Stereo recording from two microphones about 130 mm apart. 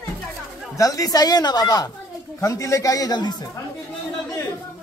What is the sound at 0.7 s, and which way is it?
Speech, 25° left (ahead or behind).